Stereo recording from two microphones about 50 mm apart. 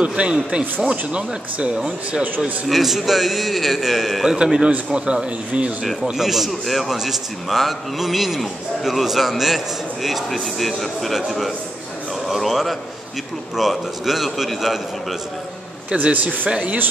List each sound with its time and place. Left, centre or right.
0.0 s speech: centre
2.7 s a man's voice: centre
4.4 s speech: centre
6.1 s a man's voice: centre
15.9 s speech: right